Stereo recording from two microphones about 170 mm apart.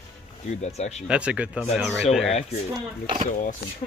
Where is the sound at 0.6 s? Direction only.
40° left (ahead or behind).